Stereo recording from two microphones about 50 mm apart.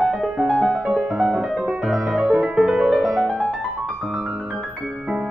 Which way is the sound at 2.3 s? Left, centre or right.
Centre.